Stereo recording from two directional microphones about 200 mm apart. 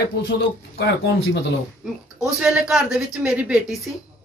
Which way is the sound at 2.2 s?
5° right (ahead or behind).